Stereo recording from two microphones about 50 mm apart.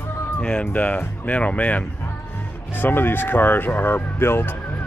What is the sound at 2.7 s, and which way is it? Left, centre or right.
Speech, left.